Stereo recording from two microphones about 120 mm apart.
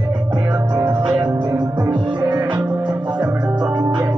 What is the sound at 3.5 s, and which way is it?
Music, 35° right (ahead or behind).